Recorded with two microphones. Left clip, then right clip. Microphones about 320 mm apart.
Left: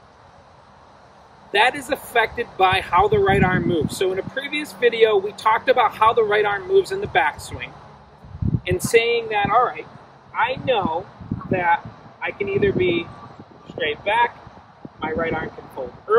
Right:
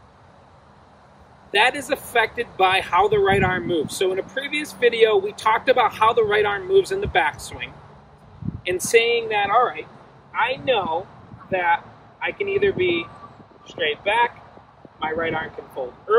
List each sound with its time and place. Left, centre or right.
1.5 s speech: centre